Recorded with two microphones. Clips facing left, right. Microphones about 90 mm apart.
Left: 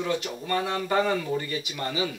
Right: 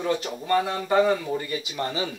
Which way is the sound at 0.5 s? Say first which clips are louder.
Right 4 dB; 20° right (ahead or behind).